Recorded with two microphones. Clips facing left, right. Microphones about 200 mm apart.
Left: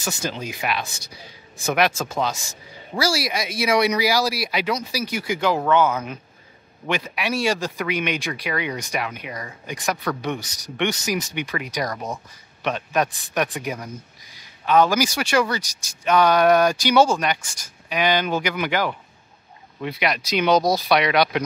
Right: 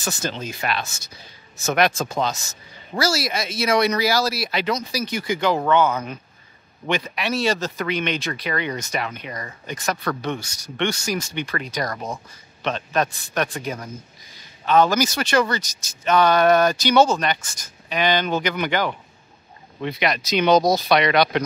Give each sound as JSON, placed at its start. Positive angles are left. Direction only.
{"t": 0.0, "sound": "speech", "side_deg": 10}
{"t": 11.9, "sound": "speech", "side_deg": 0}